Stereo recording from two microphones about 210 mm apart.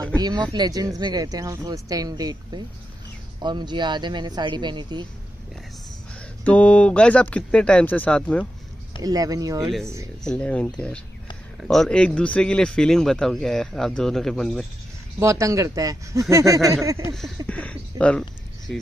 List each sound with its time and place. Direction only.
0.2 s speech: 20° right (ahead or behind)
6.4 s speech: 5° left (ahead or behind)
9.0 s speech: 15° right (ahead or behind)
9.7 s speech: centre (ahead or behind)
15.1 s speech: 15° right (ahead or behind)
17.5 s speech: 5° left (ahead or behind)